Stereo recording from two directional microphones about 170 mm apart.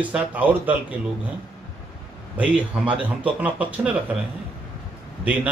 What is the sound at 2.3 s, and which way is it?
A man's voice, 10° right (ahead or behind).